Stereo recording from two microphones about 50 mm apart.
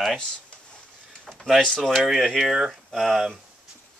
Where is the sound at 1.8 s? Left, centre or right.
Centre.